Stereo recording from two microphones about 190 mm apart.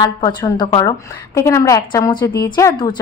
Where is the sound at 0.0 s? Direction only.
20° left (ahead or behind).